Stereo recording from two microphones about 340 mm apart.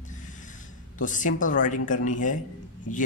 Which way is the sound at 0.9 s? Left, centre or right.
Left.